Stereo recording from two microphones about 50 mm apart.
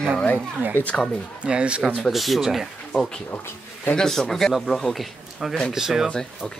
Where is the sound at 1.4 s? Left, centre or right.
Right.